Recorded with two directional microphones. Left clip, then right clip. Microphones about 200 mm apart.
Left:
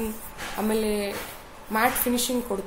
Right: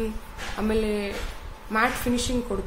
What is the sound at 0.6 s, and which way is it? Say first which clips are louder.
A woman's voice: even; 20° right (ahead or behind).